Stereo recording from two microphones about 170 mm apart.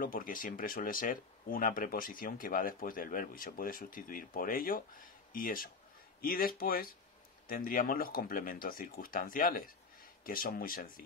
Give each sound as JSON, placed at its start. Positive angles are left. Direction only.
{"t": 0.0, "sound": "speech", "side_deg": 55}